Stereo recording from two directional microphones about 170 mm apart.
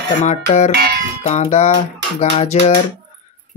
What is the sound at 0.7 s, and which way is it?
Music, 70° right (ahead or behind).